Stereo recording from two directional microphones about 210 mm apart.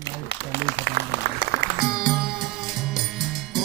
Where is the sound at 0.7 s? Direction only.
55° left (ahead or behind).